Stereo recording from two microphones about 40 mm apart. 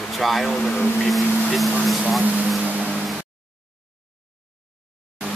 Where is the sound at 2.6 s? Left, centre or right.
Right.